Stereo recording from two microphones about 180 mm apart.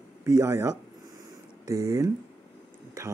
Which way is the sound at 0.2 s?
15° right (ahead or behind).